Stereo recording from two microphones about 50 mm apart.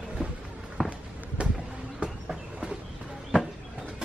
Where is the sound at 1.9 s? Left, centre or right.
Centre.